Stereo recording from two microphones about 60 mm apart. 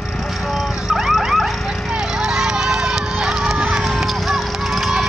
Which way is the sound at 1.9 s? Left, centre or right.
Centre.